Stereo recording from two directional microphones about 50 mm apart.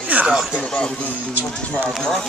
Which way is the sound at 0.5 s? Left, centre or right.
Left.